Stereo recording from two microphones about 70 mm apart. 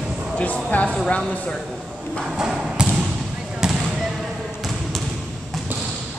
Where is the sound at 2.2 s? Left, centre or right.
Centre.